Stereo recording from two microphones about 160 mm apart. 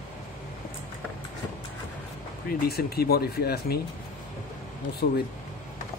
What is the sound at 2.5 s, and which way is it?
Speech, 70° left (ahead or behind).